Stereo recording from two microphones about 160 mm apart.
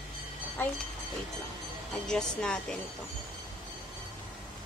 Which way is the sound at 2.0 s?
5° left (ahead or behind).